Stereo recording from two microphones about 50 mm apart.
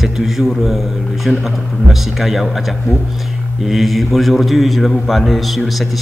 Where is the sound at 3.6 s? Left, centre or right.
Centre.